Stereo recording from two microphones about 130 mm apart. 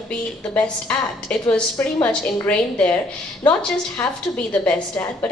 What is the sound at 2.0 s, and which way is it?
Speech, 10° left (ahead or behind).